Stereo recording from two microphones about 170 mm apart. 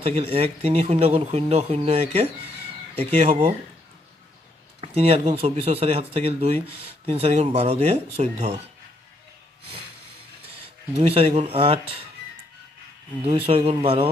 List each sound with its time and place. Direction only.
0.0 s speech: 35° right (ahead or behind)
4.7 s speech: 35° right (ahead or behind)
10.9 s speech: 35° right (ahead or behind)
13.5 s speech: 35° right (ahead or behind)